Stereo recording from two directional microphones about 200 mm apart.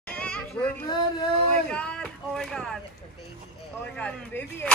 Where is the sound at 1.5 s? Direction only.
5° left (ahead or behind).